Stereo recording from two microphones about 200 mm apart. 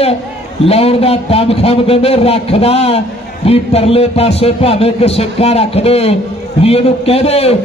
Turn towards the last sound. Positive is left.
turn(degrees=30)  # may be behind; listen again after turning